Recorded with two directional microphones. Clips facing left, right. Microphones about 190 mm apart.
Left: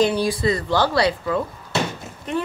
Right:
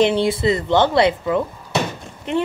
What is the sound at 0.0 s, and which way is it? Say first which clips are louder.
A woman's voice: right 3 dB; 25° right (ahead or behind).